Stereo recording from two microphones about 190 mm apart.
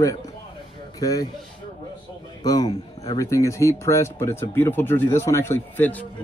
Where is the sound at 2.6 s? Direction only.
35° left (ahead or behind).